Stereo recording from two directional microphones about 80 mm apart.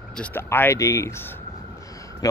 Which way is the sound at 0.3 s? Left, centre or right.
Left.